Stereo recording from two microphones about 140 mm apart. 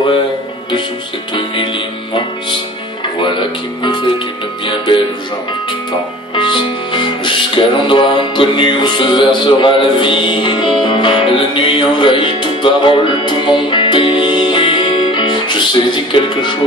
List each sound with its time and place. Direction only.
3.2 s music: 35° left (ahead or behind)
6.3 s music: 35° left (ahead or behind)